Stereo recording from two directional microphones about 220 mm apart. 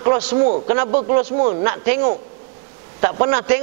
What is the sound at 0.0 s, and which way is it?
A man's voice, 10° right (ahead or behind).